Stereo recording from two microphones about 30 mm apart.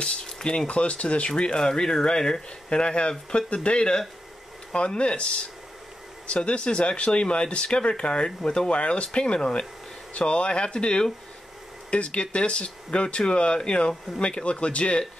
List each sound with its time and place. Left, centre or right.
0.0 s speech: left
0.7 s speech: left
1.6 s speech: centre
2.7 s speech: left
8.7 s speech: left